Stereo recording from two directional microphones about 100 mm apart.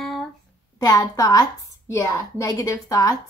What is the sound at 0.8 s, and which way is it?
A woman's voice, 40° left (ahead or behind).